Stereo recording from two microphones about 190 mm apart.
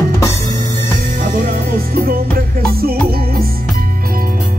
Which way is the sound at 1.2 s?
50° right (ahead or behind).